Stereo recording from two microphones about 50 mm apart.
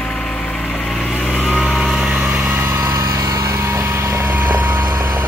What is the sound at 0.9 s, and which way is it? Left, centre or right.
Vehicle, centre.